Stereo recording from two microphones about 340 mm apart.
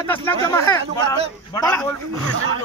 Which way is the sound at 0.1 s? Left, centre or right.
Centre.